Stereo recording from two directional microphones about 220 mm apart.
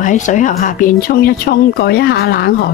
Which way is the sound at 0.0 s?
35° left (ahead or behind).